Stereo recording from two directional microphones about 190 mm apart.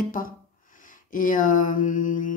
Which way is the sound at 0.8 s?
45° left (ahead or behind).